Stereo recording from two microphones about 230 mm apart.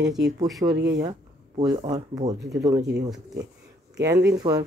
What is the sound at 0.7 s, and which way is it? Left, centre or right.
Speech, right.